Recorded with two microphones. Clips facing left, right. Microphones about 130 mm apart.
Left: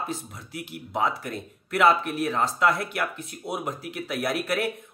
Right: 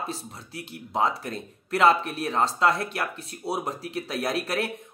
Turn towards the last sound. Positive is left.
turn(degrees=-30)  # may be behind; listen again after turning